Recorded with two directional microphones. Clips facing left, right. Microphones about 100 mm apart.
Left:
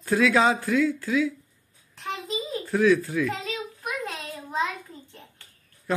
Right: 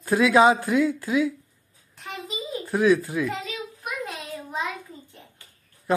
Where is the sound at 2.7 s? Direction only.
15° right (ahead or behind).